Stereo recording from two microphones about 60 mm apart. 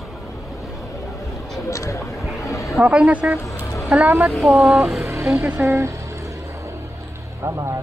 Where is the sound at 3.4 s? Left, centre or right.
Left.